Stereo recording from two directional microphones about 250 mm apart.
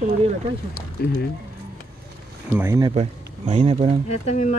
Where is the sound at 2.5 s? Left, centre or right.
Centre.